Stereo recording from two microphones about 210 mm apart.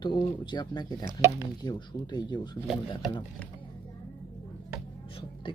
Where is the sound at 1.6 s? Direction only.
20° left (ahead or behind).